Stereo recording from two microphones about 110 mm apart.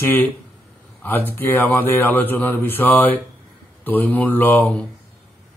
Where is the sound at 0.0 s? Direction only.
15° left (ahead or behind).